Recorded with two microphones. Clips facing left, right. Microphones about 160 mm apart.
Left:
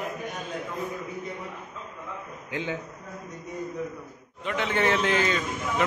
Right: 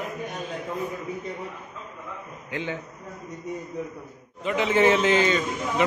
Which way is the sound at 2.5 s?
15° left (ahead or behind).